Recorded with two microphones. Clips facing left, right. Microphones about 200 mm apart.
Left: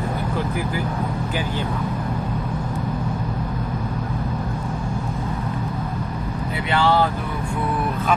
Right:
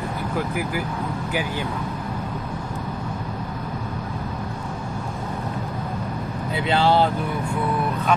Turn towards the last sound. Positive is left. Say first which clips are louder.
# even
turn(degrees=-30)  # may be behind; listen again after turning